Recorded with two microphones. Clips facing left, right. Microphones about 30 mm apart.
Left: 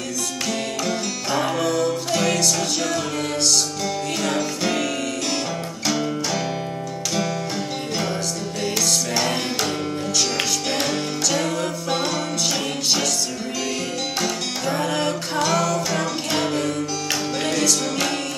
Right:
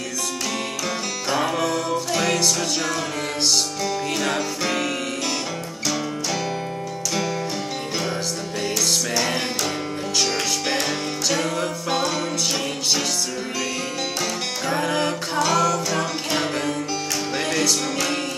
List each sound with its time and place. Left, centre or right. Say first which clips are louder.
0.8 s music: left 1 dB; centre
3.4 s music: right 2 dB; centre
4.2 s music: left 1 dB; centre
5.9 s music: left 2 dB; centre
11.3 s music: left 1 dB; centre
14.2 s music: left 1 dB; centre